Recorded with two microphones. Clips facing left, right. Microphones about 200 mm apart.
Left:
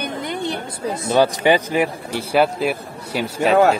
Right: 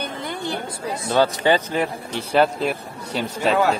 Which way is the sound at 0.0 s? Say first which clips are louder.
Left 3 dB; 20° left (ahead or behind).